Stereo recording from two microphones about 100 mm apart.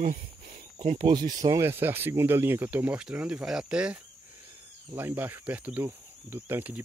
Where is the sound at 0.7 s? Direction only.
45° right (ahead or behind).